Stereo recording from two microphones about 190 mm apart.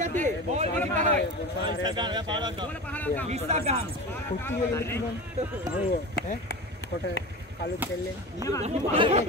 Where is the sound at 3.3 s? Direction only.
35° right (ahead or behind).